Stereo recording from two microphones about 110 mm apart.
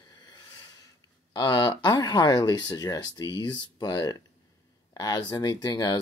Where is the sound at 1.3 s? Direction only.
40° left (ahead or behind).